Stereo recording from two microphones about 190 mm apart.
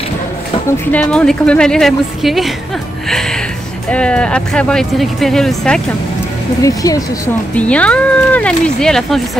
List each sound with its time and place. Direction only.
0.9 s speech: 5° left (ahead or behind)
3.1 s music: centre (ahead or behind)
3.9 s speech: 5° left (ahead or behind)
6.6 s speech: 20° left (ahead or behind)
7.5 s speech: 5° left (ahead or behind)